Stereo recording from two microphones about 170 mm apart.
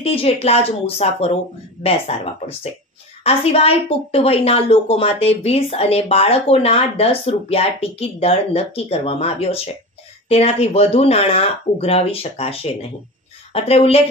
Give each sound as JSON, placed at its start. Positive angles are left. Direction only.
{"t": 0.0, "sound": "a woman's voice", "side_deg": 35}